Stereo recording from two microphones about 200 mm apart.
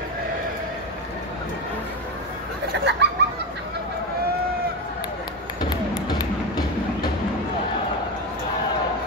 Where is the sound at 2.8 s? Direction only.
60° right (ahead or behind).